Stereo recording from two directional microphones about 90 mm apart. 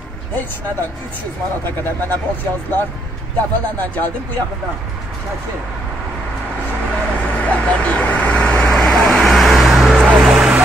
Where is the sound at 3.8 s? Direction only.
20° left (ahead or behind).